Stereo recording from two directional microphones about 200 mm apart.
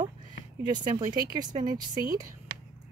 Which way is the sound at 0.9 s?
20° right (ahead or behind).